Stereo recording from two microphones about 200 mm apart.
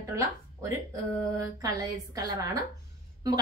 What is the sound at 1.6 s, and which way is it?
Speech, 20° right (ahead or behind).